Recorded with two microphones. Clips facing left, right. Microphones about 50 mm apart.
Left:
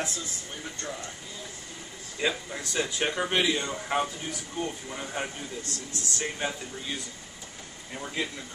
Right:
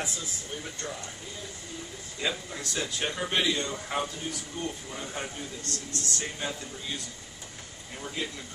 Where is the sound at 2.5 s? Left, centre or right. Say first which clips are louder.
Left 3 dB; centre.